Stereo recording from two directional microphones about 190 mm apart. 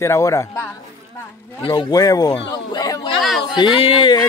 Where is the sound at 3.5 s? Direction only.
30° left (ahead or behind).